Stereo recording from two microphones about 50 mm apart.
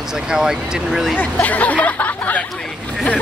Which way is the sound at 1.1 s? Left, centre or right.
Left.